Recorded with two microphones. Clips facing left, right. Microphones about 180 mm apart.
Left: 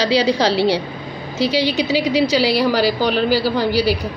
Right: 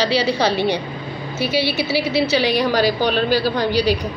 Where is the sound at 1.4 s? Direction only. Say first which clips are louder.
Left 3 dB; 15° left (ahead or behind).